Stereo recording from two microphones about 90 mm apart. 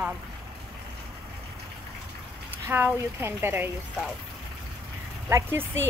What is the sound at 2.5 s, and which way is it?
A woman's voice, 25° right (ahead or behind).